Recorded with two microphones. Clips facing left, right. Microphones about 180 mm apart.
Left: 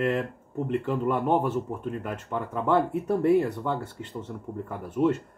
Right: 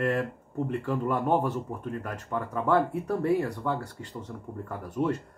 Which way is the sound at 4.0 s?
65° left (ahead or behind).